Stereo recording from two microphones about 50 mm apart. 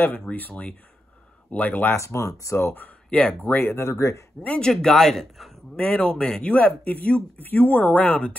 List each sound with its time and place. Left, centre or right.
0.3 s speech: left
2.0 s speech: left
2.6 s speech: left
3.1 s speech: left
3.4 s speech: left
3.7 s speech: left
4.6 s a man's voice: centre
5.8 s speech: left
6.5 s speech: left
7.3 s speech: left